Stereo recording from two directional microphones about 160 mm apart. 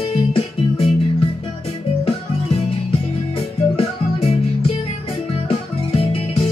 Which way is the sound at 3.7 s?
40° left (ahead or behind).